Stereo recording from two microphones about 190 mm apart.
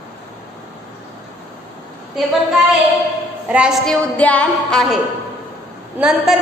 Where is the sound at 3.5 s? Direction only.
5° right (ahead or behind).